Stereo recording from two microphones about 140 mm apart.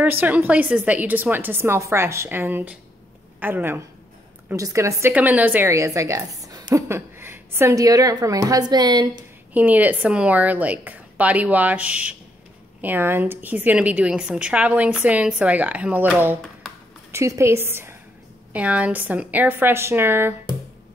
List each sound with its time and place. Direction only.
0.0 s a woman's voice: 10° right (ahead or behind)
5.1 s a woman's voice: 10° right (ahead or behind); by 9.1 s 30° right (ahead or behind)
9.5 s a woman's voice: 10° right (ahead or behind)
17.1 s a woman's voice: 20° right (ahead or behind)